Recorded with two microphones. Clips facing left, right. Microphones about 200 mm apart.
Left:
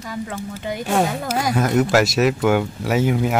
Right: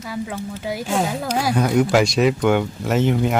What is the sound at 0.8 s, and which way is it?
Speech, 60° left (ahead or behind).